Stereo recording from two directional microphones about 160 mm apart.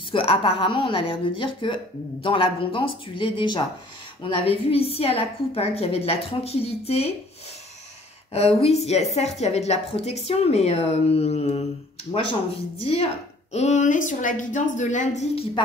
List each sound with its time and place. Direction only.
0.1 s a woman's voice: 35° left (ahead or behind)
8.3 s a woman's voice: 40° left (ahead or behind)